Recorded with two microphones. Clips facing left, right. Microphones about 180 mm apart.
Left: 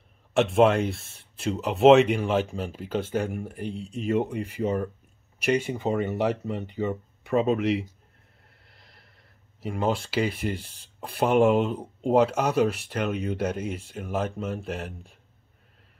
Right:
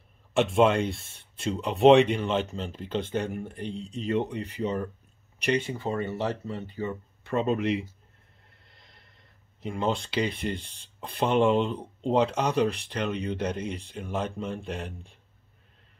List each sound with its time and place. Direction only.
0.3 s speech: centre (ahead or behind)
5.7 s speech: 20° left (ahead or behind)
7.3 s speech: 5° left (ahead or behind)
8.6 s a sound: 5° left (ahead or behind)
9.6 s speech: 5° left (ahead or behind)